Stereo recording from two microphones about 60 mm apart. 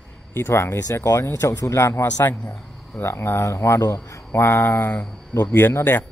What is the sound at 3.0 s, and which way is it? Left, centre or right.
Speech, left.